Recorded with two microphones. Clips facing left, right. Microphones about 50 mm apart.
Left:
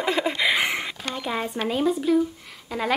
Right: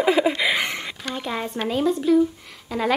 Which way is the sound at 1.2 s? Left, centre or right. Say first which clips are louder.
Even; centre.